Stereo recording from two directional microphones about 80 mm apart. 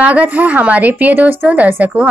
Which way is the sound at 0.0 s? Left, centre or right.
Centre.